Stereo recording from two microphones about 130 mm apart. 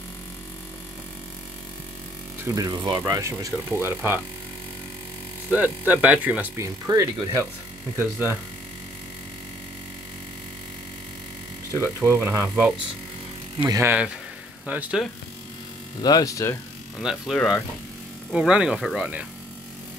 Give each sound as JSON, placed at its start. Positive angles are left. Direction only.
{"t": 2.4, "sound": "speech", "side_deg": -25}
{"t": 5.5, "sound": "speech", "side_deg": -15}
{"t": 6.6, "sound": "speech", "side_deg": -25}
{"t": 8.0, "sound": "speech", "side_deg": -15}
{"t": 12.1, "sound": "speech", "side_deg": -15}
{"t": 16.0, "sound": "speech", "side_deg": 30}
{"t": 17.0, "sound": "speech", "side_deg": -5}